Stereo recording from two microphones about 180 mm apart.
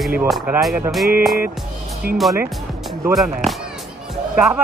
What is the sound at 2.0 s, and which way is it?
Speech, 55° right (ahead or behind).